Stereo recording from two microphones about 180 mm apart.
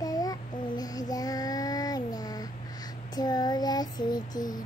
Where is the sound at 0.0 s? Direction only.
20° left (ahead or behind).